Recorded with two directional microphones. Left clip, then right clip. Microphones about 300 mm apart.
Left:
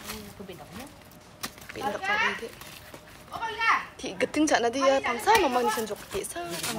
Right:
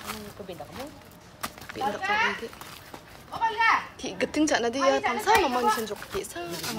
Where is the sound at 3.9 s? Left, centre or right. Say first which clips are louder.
Even; centre.